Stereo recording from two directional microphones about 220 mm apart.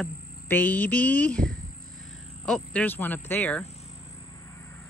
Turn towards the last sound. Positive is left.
turn(degrees=5)  # may be behind; listen again after turning